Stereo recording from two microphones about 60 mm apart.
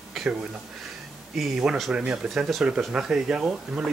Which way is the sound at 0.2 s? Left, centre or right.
Centre.